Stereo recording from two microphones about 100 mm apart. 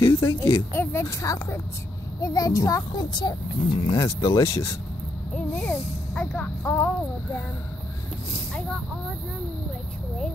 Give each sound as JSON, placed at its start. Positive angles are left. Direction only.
{"t": 0.0, "sound": "speech", "side_deg": 30}
{"t": 3.9, "sound": "speech", "side_deg": 35}
{"t": 5.5, "sound": "speech", "side_deg": 15}
{"t": 6.6, "sound": "speech", "side_deg": 20}